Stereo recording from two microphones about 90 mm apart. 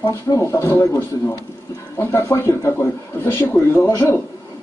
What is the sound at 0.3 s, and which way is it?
A man's voice, 35° left (ahead or behind).